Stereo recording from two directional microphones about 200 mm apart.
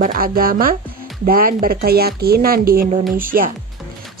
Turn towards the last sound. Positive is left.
turn(degrees=-45)  # may be behind; listen again after turning